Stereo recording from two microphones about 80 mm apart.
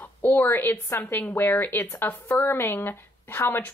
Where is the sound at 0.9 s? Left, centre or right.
Left.